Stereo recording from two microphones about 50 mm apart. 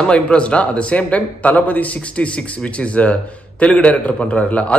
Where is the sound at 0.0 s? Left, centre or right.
Left.